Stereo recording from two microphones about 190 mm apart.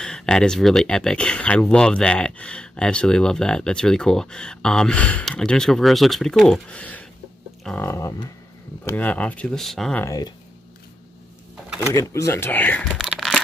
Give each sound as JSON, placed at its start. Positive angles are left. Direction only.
{"t": 0.0, "sound": "speech", "side_deg": 5}
{"t": 10.0, "sound": "speech", "side_deg": 20}
{"t": 11.9, "sound": "speech", "side_deg": 15}
{"t": 13.0, "sound": "a sound", "side_deg": 0}